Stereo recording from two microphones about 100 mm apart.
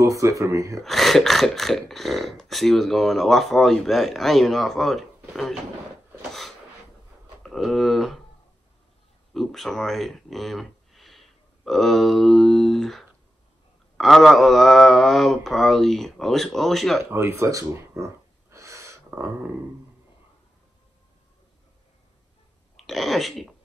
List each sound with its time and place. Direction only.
0.0 s speech: 30° right (ahead or behind)
0.8 s speech: centre (ahead or behind)
7.4 s speech: centre (ahead or behind)
9.3 s speech: centre (ahead or behind)
17.0 s snort: 25° right (ahead or behind)
22.8 s speech: centre (ahead or behind)